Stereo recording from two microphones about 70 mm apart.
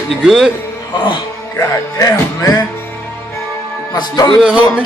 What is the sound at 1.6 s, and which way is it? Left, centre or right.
Speech, left.